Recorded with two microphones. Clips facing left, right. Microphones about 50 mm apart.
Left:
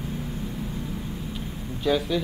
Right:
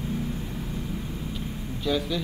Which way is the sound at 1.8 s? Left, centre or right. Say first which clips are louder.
Left 3 dB; centre.